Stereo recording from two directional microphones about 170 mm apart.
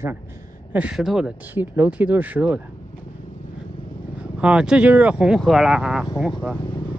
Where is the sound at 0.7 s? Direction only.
5° right (ahead or behind).